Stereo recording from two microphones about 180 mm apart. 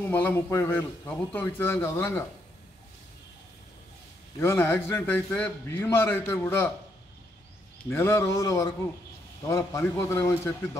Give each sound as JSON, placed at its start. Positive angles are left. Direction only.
{"t": 0.1, "sound": "a man's voice", "side_deg": 10}
{"t": 4.4, "sound": "a man's voice", "side_deg": 15}
{"t": 7.9, "sound": "a man's voice", "side_deg": 15}